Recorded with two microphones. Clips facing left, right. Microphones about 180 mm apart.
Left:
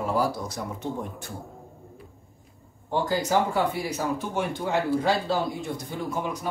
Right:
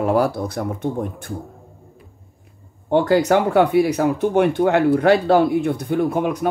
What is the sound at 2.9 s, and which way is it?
Speech, 65° right (ahead or behind).